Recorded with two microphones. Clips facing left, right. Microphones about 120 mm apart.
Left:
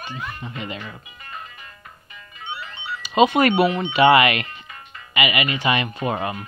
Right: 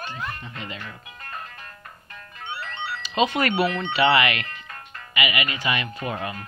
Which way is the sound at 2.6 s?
65° right (ahead or behind).